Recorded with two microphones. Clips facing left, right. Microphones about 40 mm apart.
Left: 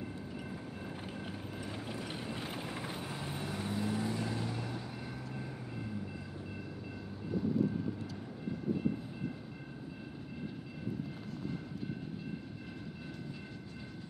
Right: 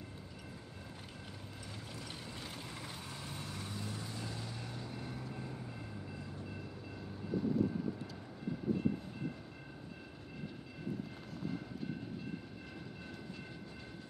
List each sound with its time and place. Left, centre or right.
1.2 s vehicle: left
4.6 s vehicle: centre